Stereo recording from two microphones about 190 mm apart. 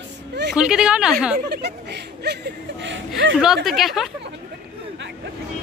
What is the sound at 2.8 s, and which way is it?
Speech, 80° right.